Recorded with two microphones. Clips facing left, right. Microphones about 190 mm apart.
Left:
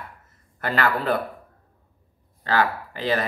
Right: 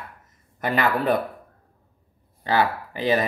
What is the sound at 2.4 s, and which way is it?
Speech, 15° right (ahead or behind).